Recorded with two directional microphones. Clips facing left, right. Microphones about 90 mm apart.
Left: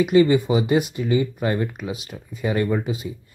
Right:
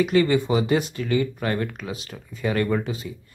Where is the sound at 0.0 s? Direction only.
20° left (ahead or behind).